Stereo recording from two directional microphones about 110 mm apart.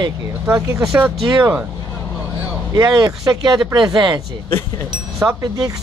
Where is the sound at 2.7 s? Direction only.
35° right (ahead or behind).